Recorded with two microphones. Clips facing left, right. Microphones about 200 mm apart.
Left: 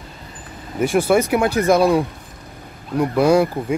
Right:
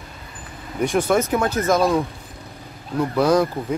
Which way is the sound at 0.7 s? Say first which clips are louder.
Left 3 dB; 5° left (ahead or behind).